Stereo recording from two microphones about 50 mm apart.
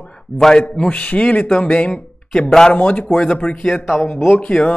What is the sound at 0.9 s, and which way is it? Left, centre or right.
Speech, left.